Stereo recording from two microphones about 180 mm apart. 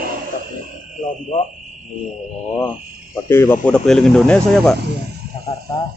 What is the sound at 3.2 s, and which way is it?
Speech, 15° left (ahead or behind).